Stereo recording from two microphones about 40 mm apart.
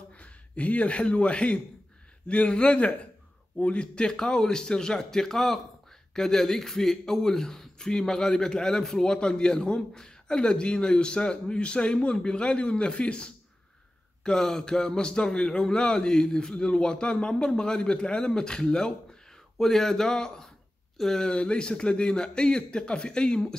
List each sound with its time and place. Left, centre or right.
0.1 s a man's voice: left
14.2 s a man's voice: centre
19.6 s a man's voice: centre
21.3 s a man's voice: left